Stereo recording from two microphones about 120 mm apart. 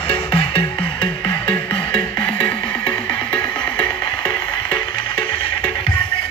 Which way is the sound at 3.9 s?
40° left (ahead or behind).